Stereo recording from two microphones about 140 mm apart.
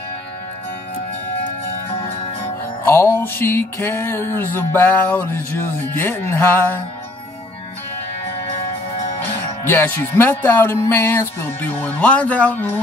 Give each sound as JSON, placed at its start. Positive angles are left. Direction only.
{"t": 2.9, "sound": "music", "side_deg": 20}
{"t": 9.7, "sound": "music", "side_deg": 15}